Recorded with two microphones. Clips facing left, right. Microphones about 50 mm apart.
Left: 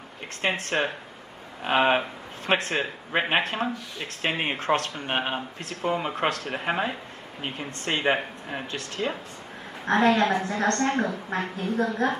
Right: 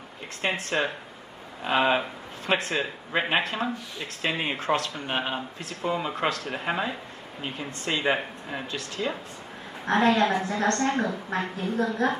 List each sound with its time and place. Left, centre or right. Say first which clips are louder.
0.4 s a woman's voice: left 1 dB; left
8.7 s a woman's voice: left 1 dB; left